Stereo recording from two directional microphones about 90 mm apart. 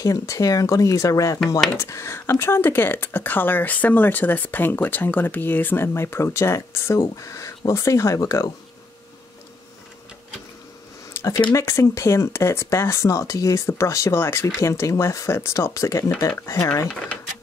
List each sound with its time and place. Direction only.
0.0 s speech: 40° left (ahead or behind)
11.1 s speech: 35° left (ahead or behind)
16.8 s speech: 10° left (ahead or behind)